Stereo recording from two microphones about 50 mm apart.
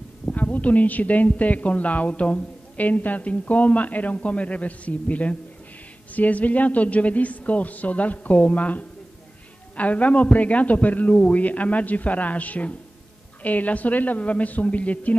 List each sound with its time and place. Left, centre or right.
0.2 s a man's voice: left